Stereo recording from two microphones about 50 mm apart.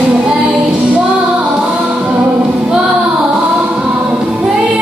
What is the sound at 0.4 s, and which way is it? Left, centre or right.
Music, right.